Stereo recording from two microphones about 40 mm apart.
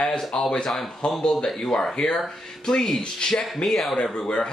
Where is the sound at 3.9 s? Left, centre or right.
Left.